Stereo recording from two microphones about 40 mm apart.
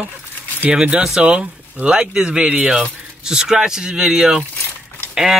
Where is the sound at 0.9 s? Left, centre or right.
Centre.